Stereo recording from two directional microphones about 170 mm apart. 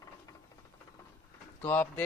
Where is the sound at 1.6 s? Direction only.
10° left (ahead or behind).